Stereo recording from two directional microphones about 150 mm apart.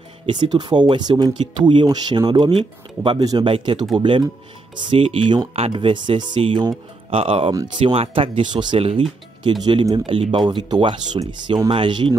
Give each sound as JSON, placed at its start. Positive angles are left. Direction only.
{"t": 0.3, "sound": "speech", "side_deg": -30}